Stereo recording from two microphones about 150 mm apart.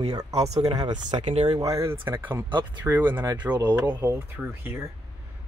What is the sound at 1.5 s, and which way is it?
Speech, 20° right (ahead or behind).